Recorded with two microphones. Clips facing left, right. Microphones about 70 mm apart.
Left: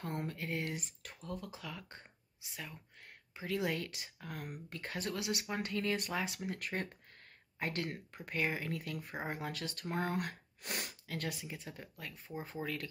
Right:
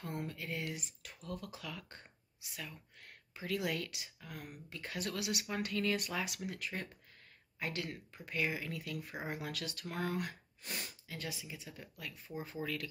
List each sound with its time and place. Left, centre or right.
0.0 s speech: left
1.3 s speech: left
4.9 s speech: left
6.6 s speech: left
10.1 s speech: left
12.4 s speech: left